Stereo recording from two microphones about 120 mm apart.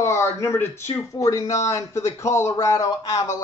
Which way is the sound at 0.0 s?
25° left (ahead or behind).